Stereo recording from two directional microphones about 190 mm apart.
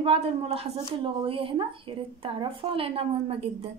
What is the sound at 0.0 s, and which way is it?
A woman's voice, 30° right (ahead or behind).